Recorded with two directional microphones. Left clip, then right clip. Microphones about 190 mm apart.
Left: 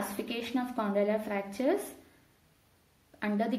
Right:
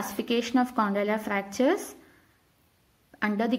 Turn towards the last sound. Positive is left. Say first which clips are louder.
# right 4 dB
turn(degrees=-25)  # may be behind; listen again after turning